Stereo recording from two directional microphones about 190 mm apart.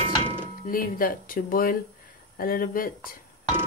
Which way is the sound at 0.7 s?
50° left (ahead or behind).